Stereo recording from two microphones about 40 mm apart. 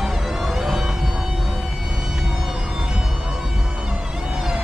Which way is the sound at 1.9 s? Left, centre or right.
Centre.